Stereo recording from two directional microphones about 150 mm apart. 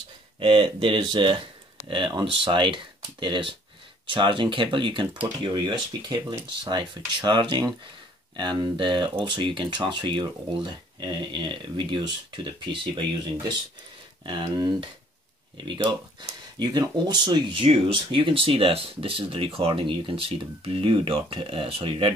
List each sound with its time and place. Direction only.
0.4 s speech: 35° right (ahead or behind)